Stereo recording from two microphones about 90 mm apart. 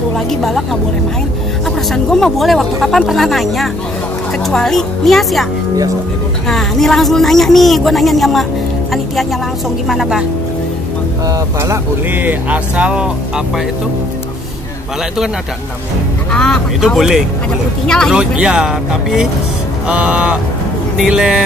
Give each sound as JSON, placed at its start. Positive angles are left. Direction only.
{"t": 0.3, "sound": "speech", "side_deg": 5}
{"t": 2.0, "sound": "speech", "side_deg": 5}
{"t": 6.5, "sound": "speech", "side_deg": 5}
{"t": 9.8, "sound": "speech", "side_deg": -5}
{"t": 11.2, "sound": "speech", "side_deg": -35}
{"t": 12.1, "sound": "speech", "side_deg": -20}
{"t": 16.3, "sound": "speech", "side_deg": 10}
{"t": 16.8, "sound": "speech", "side_deg": -5}
{"t": 17.8, "sound": "speech", "side_deg": 10}
{"t": 18.1, "sound": "speech", "side_deg": -10}